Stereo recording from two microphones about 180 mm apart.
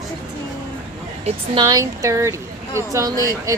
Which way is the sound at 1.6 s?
20° right (ahead or behind).